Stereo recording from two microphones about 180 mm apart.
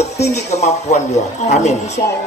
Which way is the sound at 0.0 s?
40° left (ahead or behind).